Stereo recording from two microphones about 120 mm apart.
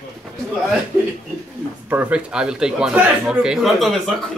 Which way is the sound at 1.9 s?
10° right (ahead or behind).